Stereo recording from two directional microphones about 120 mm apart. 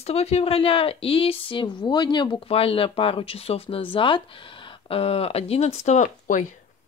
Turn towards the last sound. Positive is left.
turn(degrees=90)